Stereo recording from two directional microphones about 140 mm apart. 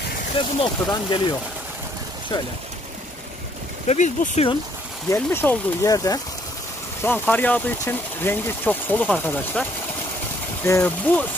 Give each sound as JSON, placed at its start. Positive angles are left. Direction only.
{"t": 0.4, "sound": "speech", "side_deg": 35}
{"t": 3.8, "sound": "speech", "side_deg": 55}
{"t": 5.1, "sound": "speech", "side_deg": 15}
{"t": 7.0, "sound": "speech", "side_deg": 15}